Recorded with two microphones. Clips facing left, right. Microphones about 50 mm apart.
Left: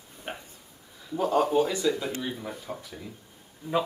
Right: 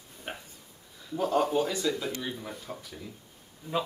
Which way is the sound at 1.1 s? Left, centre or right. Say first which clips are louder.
Left 2 dB; centre.